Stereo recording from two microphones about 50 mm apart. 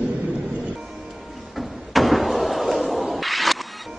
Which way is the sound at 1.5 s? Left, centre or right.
Centre.